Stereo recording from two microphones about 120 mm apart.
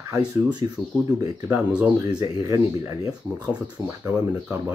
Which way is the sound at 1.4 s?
10° right (ahead or behind).